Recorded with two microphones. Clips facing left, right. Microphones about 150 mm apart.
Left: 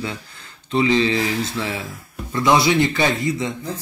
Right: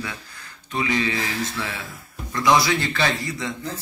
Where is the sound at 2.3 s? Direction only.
25° left (ahead or behind).